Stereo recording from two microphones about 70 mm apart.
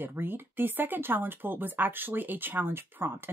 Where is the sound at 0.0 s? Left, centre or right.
Right.